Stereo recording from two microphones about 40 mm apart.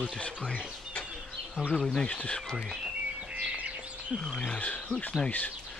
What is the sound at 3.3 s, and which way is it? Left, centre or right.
Bird, right.